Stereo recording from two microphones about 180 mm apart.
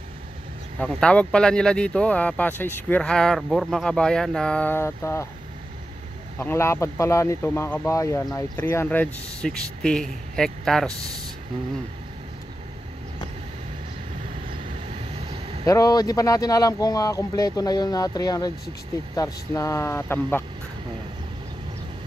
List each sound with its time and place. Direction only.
0.7 s speech: 5° left (ahead or behind)
6.4 s speech: 15° left (ahead or behind)
15.2 s vehicle: 30° right (ahead or behind)
15.6 s speech: 15° left (ahead or behind)